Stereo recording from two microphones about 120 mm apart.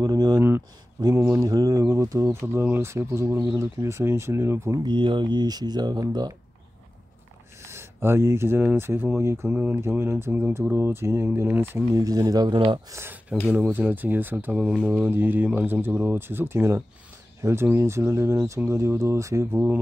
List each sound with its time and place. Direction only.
0.0 s speech: 30° right (ahead or behind)
4.8 s speech: 40° right (ahead or behind)
7.6 s speech: 20° right (ahead or behind); by 12.8 s 40° right (ahead or behind)
12.9 s speech: 20° right (ahead or behind)